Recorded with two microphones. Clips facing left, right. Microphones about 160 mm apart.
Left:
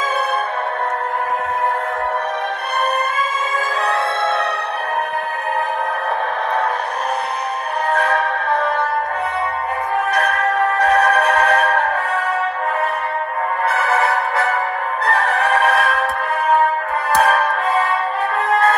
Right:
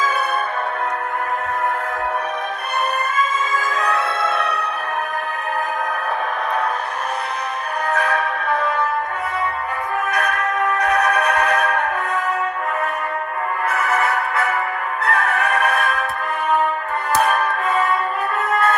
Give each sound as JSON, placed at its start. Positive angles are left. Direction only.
{"t": 3.7, "sound": "music", "side_deg": 30}
{"t": 7.9, "sound": "music", "side_deg": 30}
{"t": 10.0, "sound": "music", "side_deg": 30}
{"t": 13.7, "sound": "music", "side_deg": 30}
{"t": 17.3, "sound": "music", "side_deg": 35}